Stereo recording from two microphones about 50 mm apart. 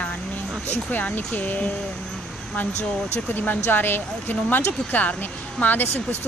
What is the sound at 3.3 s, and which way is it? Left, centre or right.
Speech, left.